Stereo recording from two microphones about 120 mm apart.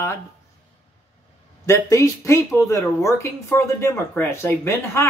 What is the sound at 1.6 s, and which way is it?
Speech, 25° left (ahead or behind).